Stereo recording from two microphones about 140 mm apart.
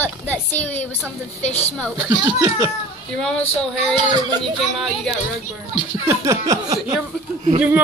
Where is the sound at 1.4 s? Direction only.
50° left (ahead or behind).